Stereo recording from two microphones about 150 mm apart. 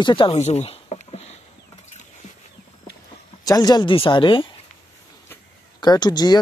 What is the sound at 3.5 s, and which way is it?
Speech, 25° left (ahead or behind).